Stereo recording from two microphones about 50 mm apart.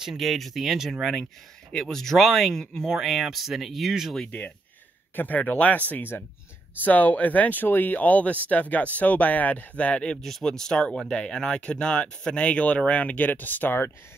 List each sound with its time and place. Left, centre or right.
0.2 s speech: centre
1.7 s speech: centre
2.6 s speech: centre
2.9 s speech: centre
5.1 s speech: left
10.4 s speech: centre; by 13.7 s left